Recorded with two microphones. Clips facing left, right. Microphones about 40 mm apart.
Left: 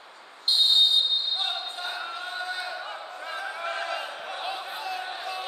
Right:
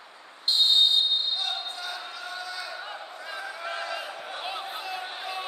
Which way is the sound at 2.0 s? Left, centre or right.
Left.